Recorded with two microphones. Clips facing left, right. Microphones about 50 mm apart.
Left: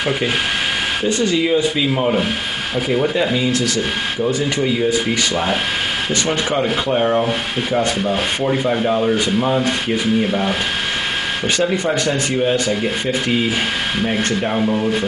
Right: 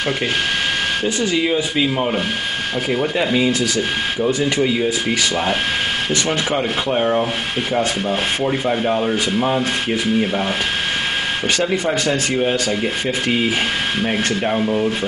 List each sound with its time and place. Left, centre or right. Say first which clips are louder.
1.0 s speech: left 4 dB; centre
1.5 s speech: left 2 dB; centre
3.4 s speech: even; centre
12.8 s speech: left 1 dB; centre